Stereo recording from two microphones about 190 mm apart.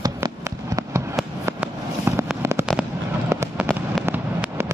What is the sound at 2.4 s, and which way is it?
Fireworks, 15° right (ahead or behind).